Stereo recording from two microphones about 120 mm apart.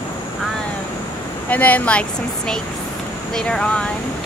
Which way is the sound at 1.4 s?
15° left (ahead or behind).